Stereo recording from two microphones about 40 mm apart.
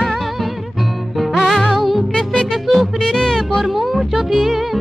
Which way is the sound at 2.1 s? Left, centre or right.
Centre.